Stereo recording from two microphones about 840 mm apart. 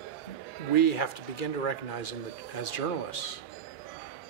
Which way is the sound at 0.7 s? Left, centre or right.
Left.